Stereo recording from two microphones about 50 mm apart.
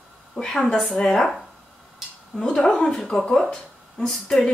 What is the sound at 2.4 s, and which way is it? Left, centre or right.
Speech, centre.